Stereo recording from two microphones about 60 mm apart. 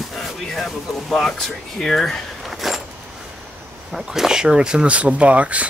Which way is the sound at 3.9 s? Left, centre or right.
Centre.